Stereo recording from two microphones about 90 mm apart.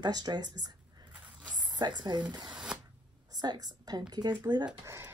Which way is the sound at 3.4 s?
50° right (ahead or behind).